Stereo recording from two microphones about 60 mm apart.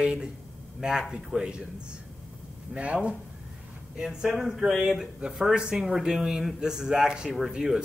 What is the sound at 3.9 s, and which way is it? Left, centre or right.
Speech, centre.